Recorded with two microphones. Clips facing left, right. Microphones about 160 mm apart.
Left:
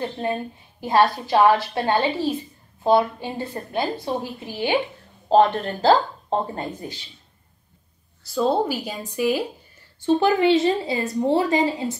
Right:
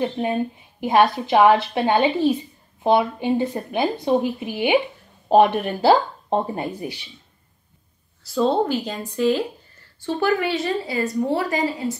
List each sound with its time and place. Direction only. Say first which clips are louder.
0.0 s a woman's voice: right 4 dB; 15° right (ahead or behind)
8.2 s a woman's voice: right 1 dB; centre (ahead or behind)
10.0 s a woman's voice: left 4 dB; 20° left (ahead or behind)